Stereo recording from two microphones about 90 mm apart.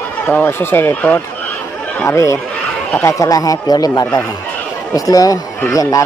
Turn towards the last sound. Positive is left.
turn(degrees=40)  # may be behind; listen again after turning